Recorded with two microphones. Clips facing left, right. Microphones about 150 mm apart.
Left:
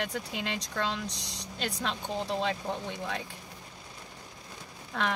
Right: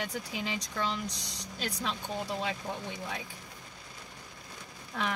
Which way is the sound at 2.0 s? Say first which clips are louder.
Left 3 dB; 25° left (ahead or behind).